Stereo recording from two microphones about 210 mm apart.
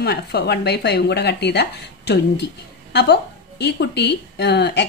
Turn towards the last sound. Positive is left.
turn(degrees=50)  # may be behind; listen again after turning